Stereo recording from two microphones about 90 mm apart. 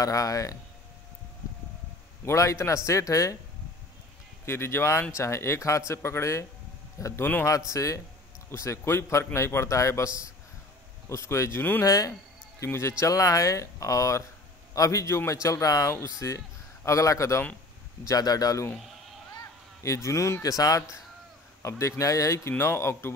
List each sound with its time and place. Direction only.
0.0 s a man's voice: 40° left (ahead or behind)
2.2 s a man's voice: 35° left (ahead or behind)
4.5 s a man's voice: 25° left (ahead or behind)
12.1 s a man's voice: 25° left (ahead or behind); by 18.7 s 40° left (ahead or behind)
19.8 s a man's voice: 35° left (ahead or behind)